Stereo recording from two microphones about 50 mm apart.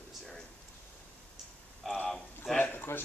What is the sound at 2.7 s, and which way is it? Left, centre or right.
Speech, left.